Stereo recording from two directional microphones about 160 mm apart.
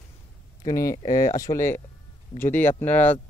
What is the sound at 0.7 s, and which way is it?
Speech, 20° left (ahead or behind).